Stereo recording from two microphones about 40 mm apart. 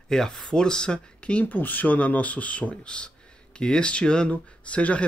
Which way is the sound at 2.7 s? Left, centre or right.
Left.